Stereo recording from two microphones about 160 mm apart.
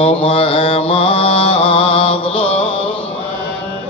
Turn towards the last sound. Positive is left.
turn(degrees=35)  # may be behind; listen again after turning